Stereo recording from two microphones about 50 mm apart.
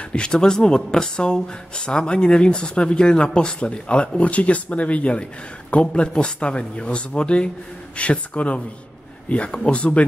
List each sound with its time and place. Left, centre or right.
0.1 s speech: centre